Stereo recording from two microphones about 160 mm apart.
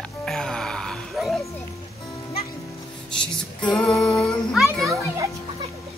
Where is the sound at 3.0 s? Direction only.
5° left (ahead or behind).